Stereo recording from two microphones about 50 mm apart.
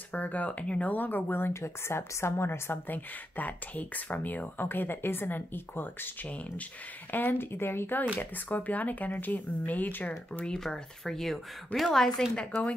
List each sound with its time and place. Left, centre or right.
0.1 s speech: left
1.5 s a woman's voice: left
2.9 s speech: left
6.2 s speech: left
7.1 s speech: left
8.2 s speech: left
10.4 s speech: centre